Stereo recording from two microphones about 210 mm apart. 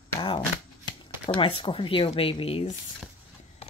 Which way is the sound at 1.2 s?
25° left (ahead or behind).